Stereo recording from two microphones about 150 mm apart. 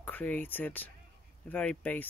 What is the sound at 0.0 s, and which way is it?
Speech, 10° left (ahead or behind).